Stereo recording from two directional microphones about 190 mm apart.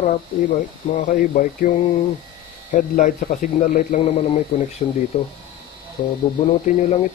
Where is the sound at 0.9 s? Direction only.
45° left (ahead or behind).